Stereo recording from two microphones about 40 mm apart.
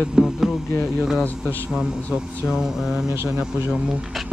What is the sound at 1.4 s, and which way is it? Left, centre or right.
Speech, centre.